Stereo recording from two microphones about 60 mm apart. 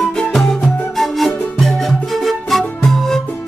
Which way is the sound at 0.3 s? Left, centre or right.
Centre.